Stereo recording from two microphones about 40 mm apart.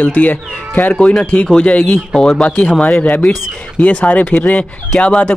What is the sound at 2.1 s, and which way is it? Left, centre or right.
Speech, centre.